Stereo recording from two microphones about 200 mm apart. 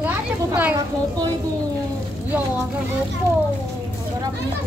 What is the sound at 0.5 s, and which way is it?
Speech, 10° right (ahead or behind).